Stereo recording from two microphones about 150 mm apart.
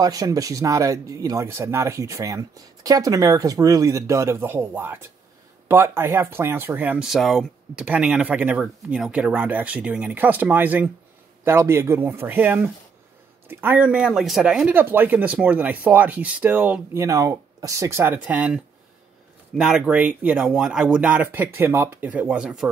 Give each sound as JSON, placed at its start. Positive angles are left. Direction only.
{"t": 0.0, "sound": "speech", "side_deg": -25}